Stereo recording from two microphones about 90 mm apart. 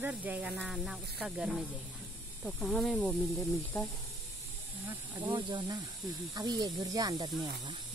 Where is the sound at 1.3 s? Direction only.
10° right (ahead or behind).